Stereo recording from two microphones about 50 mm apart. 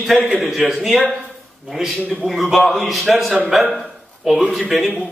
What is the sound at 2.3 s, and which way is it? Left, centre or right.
Speech, centre.